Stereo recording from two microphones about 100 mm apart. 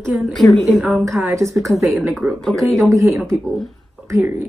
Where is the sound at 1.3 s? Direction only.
30° right (ahead or behind).